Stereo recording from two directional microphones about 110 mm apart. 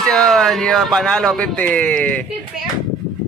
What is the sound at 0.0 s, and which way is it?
Speech, 5° left (ahead or behind).